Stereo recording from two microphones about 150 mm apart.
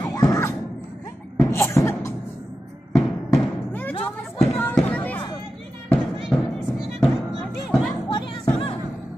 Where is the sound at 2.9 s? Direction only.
5° left (ahead or behind).